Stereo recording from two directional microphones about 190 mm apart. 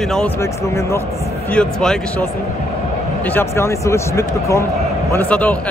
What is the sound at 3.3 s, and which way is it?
A man's voice, 15° left (ahead or behind).